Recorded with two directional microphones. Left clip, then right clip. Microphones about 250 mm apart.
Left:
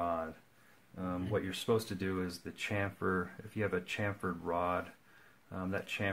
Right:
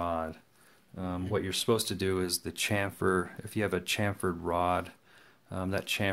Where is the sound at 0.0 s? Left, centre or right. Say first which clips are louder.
Right 3 dB; right.